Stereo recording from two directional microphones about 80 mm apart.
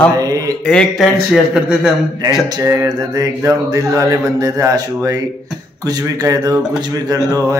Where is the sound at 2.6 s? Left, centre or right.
Right.